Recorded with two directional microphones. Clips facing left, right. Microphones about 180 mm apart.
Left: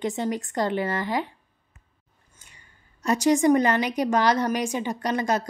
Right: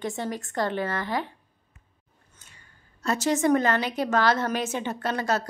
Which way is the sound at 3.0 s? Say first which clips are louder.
Left 4 dB; 15° left (ahead or behind).